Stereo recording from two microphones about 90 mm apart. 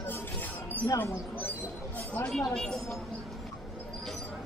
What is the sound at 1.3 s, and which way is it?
Speech, 15° left (ahead or behind).